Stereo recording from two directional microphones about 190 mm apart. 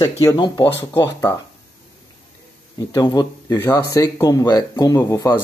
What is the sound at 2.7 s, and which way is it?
Speech, 20° left (ahead or behind).